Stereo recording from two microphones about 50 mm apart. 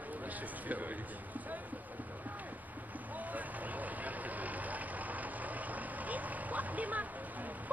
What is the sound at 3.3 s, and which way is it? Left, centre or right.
Vehicle, right.